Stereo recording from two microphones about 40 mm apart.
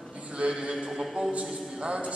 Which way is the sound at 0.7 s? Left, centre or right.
Centre.